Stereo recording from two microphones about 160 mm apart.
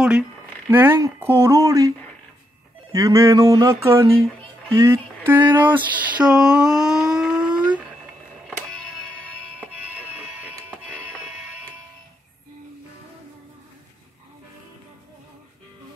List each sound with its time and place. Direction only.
0.7 s speech: 15° right (ahead or behind)
11.0 s music: 10° right (ahead or behind)